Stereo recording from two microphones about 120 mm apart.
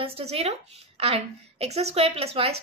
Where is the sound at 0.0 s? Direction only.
55° right (ahead or behind).